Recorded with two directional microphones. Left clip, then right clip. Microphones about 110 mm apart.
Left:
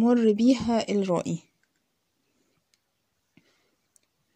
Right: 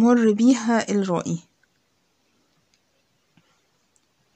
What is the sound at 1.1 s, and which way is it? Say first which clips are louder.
Speech: right 2 dB; 40° left (ahead or behind).